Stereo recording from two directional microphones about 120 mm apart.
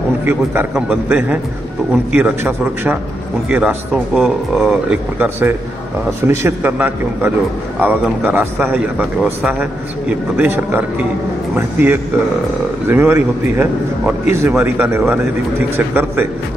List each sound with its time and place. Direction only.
0.2 s a man's voice: 20° right (ahead or behind)